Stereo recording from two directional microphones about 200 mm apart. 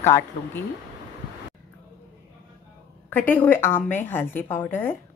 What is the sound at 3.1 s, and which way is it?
A woman's voice, 10° left (ahead or behind).